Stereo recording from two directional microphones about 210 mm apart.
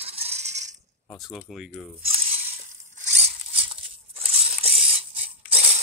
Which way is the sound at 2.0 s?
30° right (ahead or behind).